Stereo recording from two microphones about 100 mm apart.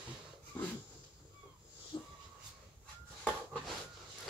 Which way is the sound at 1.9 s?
40° left (ahead or behind).